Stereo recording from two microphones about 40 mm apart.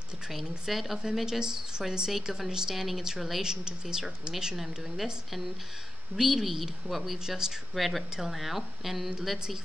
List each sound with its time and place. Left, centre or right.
0.3 s a woman's voice: centre
3.4 s a woman's voice: centre
6.1 s a woman's voice: centre
7.7 s a woman's voice: centre